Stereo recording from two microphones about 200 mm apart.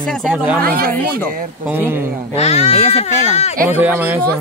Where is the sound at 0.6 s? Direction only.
50° right (ahead or behind).